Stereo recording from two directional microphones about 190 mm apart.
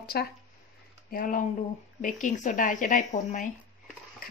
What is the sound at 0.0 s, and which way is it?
Speech, 55° left (ahead or behind).